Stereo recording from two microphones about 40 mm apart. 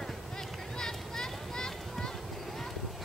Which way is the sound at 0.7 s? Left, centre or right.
Centre.